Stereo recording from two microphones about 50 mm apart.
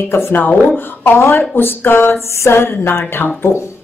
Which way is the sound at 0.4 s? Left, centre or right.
Left.